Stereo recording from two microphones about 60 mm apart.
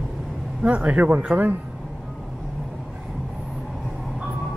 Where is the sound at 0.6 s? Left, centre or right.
Right.